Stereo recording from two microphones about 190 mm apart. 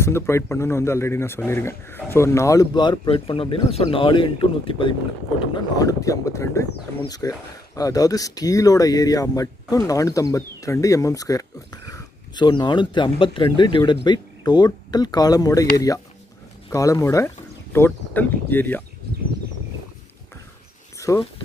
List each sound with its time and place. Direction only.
0.0 s a man's voice: 15° left (ahead or behind)
16.7 s a man's voice: 15° left (ahead or behind)
21.1 s a man's voice: 15° left (ahead or behind)